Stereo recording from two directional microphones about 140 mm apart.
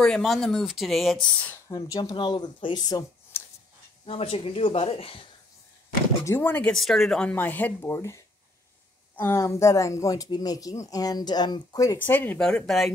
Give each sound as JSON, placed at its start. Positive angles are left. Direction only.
{"t": 0.0, "sound": "speech", "side_deg": 5}
{"t": 1.7, "sound": "speech", "side_deg": 25}
{"t": 3.3, "sound": "a sound", "side_deg": 20}
{"t": 4.0, "sound": "speech", "side_deg": 45}
{"t": 6.2, "sound": "speech", "side_deg": 15}
{"t": 6.7, "sound": "speech", "side_deg": 0}